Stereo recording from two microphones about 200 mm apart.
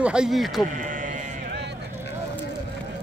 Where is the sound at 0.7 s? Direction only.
40° right (ahead or behind).